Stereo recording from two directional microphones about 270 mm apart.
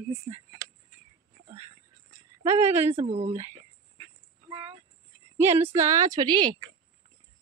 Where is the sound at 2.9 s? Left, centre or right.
Right.